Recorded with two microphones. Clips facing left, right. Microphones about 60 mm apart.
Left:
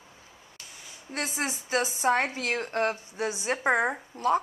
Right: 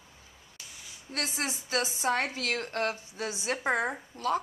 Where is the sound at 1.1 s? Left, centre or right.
Left.